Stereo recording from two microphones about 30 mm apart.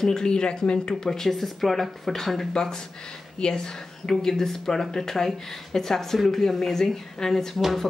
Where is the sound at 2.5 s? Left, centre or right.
Left.